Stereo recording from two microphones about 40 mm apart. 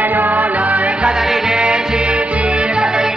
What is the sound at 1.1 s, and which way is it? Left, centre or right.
Music, centre.